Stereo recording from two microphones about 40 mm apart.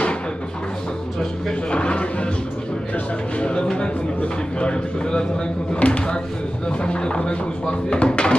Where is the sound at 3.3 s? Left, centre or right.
Left.